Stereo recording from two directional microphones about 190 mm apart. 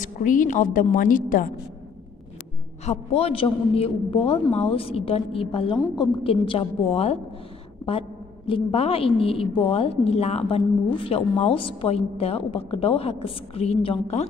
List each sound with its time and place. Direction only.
0.0 s a woman's voice: 45° left (ahead or behind)
2.8 s a woman's voice: 35° left (ahead or behind)
8.5 s a woman's voice: 30° left (ahead or behind)